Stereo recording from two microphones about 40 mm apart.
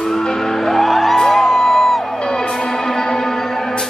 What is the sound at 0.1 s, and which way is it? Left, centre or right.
Music, centre.